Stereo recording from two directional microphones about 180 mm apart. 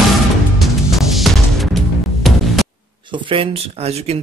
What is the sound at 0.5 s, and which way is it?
Music, centre (ahead or behind).